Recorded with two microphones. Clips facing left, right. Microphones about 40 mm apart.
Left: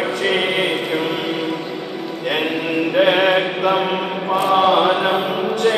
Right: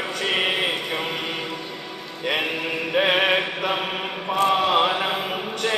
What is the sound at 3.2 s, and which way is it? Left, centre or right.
Mantra, left.